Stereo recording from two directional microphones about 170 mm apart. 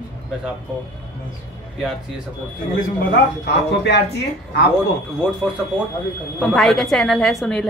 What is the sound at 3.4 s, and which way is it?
Speech, 80° left.